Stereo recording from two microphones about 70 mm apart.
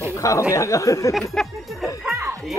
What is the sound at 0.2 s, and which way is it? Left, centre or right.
Speech, left.